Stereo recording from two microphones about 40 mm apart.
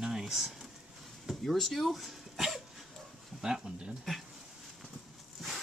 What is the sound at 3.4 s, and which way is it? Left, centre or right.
Speech, centre.